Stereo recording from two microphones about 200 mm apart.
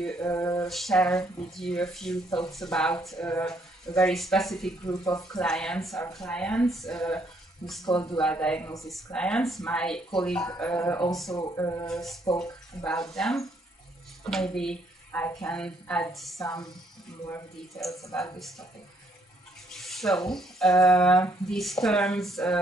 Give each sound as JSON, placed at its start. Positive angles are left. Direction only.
{"t": 0.2, "sound": "speech", "side_deg": 15}
{"t": 0.7, "sound": "speech", "side_deg": 0}
{"t": 4.8, "sound": "speech", "side_deg": 20}
{"t": 5.4, "sound": "speech", "side_deg": 5}
{"t": 7.8, "sound": "speech", "side_deg": 25}
{"t": 8.2, "sound": "speech", "side_deg": 5}
{"t": 11.1, "sound": "speech", "side_deg": 0}
{"t": 11.3, "sound": "speech", "side_deg": 15}
{"t": 11.9, "sound": "speech", "side_deg": 0}
{"t": 16.3, "sound": "speech", "side_deg": 20}
{"t": 18.1, "sound": "speech", "side_deg": 0}
{"t": 19.7, "sound": "speech", "side_deg": 0}